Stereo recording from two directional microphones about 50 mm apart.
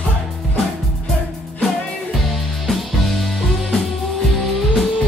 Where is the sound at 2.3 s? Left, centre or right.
Centre.